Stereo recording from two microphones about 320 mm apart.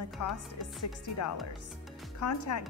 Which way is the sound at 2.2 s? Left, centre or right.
Left.